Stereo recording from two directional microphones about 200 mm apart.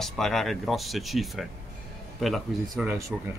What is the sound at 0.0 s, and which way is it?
Speech, centre (ahead or behind).